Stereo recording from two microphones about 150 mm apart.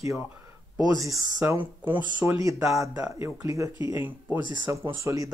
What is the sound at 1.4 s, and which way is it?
Speech, 10° right (ahead or behind).